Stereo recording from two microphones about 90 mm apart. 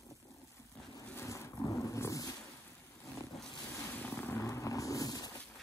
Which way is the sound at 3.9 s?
20° left (ahead or behind).